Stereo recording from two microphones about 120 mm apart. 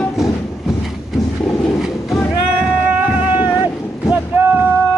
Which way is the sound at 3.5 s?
25° left (ahead or behind).